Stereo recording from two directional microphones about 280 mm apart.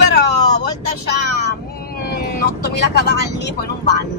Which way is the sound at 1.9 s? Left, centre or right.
Left.